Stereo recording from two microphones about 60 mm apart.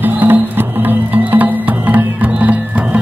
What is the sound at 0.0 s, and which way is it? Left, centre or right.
Music, right.